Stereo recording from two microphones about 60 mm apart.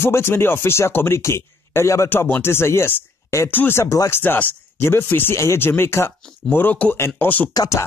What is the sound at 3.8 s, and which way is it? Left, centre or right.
Speech, left.